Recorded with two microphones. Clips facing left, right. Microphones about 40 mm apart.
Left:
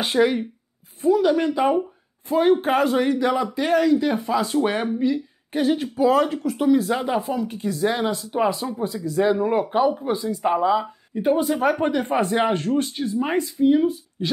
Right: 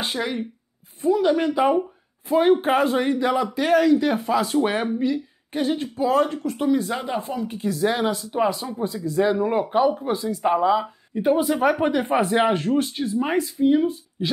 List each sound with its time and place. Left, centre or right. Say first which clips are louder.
0.0 s speech: left 7 dB; centre
1.1 s speech: even; centre
7.3 s speech: even; centre
9.5 s speech: even; centre